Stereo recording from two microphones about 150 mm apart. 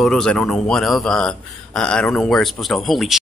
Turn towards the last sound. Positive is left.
turn(degrees=0)  # may be behind; listen again after turning